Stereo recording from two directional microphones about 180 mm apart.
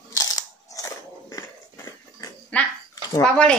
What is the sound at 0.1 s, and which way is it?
Crunch, 20° left (ahead or behind).